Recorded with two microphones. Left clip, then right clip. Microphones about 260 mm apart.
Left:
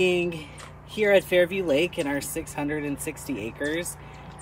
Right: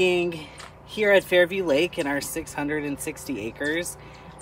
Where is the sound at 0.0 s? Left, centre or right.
Centre.